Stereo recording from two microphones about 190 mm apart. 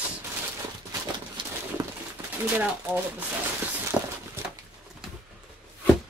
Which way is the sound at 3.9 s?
5° right (ahead or behind).